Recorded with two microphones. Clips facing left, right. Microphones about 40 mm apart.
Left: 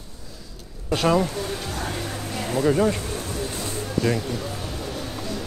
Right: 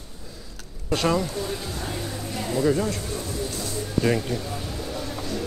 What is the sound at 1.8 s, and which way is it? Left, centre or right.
Music, left.